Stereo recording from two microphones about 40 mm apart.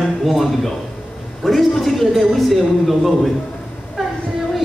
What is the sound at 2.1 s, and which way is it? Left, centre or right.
A man's voice, centre.